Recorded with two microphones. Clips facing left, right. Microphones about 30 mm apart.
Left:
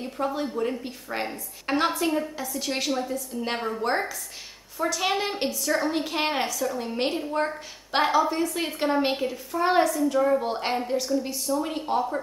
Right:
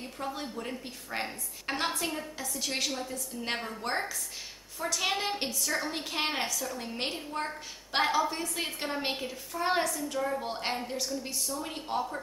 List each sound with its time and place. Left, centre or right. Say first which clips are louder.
0.0 s a woman's voice: left 8 dB; centre